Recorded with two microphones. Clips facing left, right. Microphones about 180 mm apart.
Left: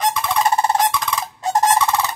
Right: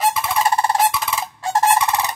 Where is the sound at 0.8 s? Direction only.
5° right (ahead or behind).